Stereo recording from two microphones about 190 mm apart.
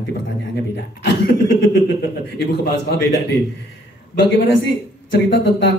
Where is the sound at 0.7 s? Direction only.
60° left (ahead or behind).